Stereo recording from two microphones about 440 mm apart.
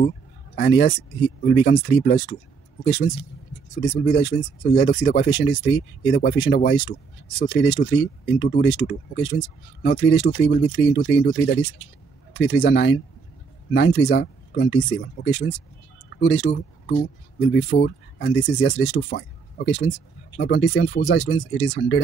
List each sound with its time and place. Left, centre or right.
0.6 s speech: left